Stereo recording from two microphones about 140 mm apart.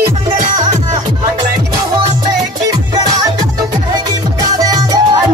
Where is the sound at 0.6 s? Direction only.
30° right (ahead or behind).